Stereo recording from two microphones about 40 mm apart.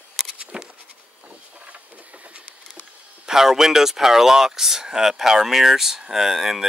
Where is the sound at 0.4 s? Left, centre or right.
Right.